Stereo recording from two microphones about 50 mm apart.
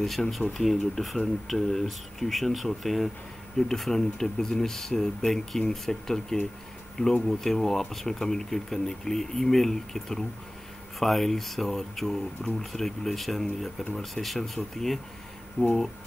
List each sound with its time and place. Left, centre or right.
0.0 s speech: centre
15.6 s speech: left